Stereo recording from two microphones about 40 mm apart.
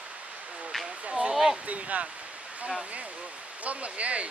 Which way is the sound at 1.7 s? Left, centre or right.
Right.